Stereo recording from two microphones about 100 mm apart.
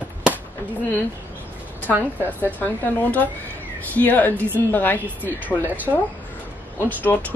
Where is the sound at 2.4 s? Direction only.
20° left (ahead or behind).